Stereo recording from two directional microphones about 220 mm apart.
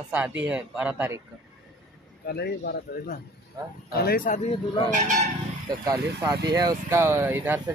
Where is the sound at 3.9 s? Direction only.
40° left (ahead or behind).